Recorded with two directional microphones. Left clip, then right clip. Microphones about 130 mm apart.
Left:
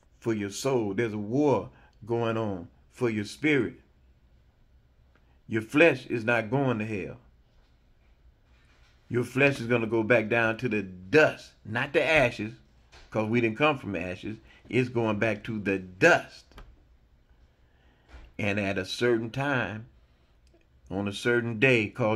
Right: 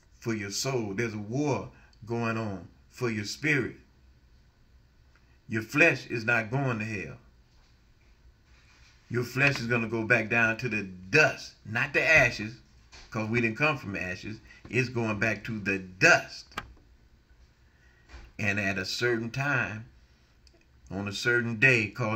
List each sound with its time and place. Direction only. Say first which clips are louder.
0.2 s speech: left 3 dB; 25° left (ahead or behind)
5.5 s speech: left 2 dB; 30° left (ahead or behind)
9.1 s speech: left 2 dB; 30° left (ahead or behind)
18.3 s speech: even; 30° left (ahead or behind)
20.8 s speech: left 1 dB; 30° left (ahead or behind)